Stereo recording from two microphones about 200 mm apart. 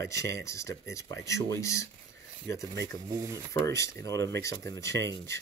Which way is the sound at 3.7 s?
15° left (ahead or behind).